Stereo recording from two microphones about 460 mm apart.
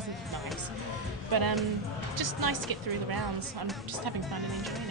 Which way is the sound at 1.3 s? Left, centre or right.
Right.